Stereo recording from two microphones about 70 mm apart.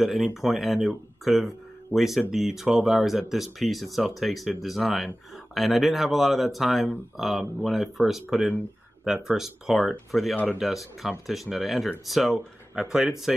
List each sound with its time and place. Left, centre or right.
0.0 s speech: centre
10.3 s a man's voice: left
11.0 s speech: centre